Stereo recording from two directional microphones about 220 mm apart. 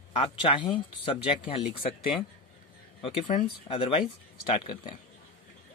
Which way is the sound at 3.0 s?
25° left (ahead or behind).